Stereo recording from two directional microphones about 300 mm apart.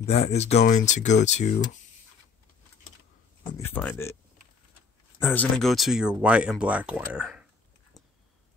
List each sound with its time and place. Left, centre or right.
0.0 s speech: left
3.5 s speech: centre
5.2 s speech: centre